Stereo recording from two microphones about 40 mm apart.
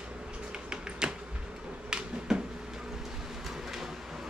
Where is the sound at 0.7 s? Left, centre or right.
Centre.